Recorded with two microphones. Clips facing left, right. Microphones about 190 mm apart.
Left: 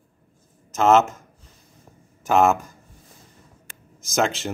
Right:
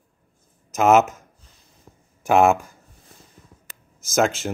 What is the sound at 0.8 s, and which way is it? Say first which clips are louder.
Speech: right 1 dB; 10° right (ahead or behind).